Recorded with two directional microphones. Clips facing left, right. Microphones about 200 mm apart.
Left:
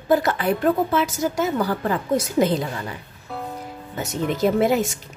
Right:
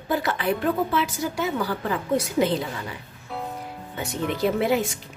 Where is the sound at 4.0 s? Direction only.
45° left (ahead or behind).